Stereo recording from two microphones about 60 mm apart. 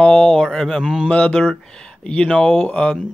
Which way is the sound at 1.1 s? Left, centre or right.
Left.